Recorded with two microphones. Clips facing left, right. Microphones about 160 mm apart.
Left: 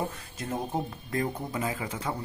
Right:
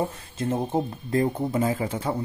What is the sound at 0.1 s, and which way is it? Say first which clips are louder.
Speech: right 7 dB; 25° right (ahead or behind).